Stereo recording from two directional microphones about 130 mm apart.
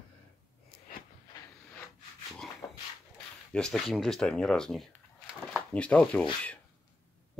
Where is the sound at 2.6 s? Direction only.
20° left (ahead or behind).